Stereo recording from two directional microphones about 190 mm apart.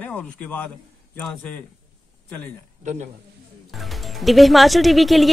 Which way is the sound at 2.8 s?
40° right (ahead or behind).